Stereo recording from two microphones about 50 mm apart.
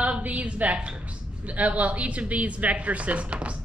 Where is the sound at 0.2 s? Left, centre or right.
Right.